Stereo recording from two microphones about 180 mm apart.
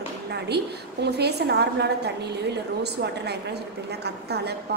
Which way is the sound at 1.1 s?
65° right (ahead or behind).